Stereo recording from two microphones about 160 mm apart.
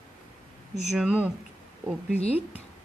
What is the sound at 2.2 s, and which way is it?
Speech, 40° left (ahead or behind).